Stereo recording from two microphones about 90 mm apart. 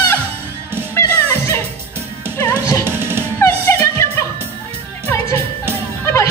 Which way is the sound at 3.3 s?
25° left (ahead or behind).